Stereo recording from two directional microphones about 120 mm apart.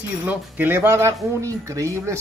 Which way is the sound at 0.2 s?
15° right (ahead or behind).